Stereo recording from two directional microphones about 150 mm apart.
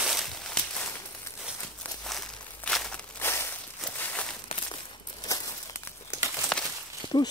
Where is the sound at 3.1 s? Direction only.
15° left (ahead or behind).